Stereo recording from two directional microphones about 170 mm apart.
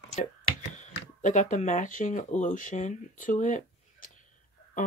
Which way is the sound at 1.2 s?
45° left (ahead or behind).